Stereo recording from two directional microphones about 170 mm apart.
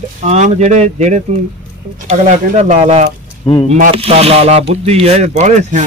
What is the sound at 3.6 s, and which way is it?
Speech, 50° right (ahead or behind).